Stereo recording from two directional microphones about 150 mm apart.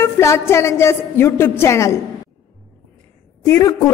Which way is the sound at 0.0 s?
20° left (ahead or behind).